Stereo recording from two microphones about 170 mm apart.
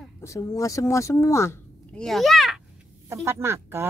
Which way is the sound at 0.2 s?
20° left (ahead or behind).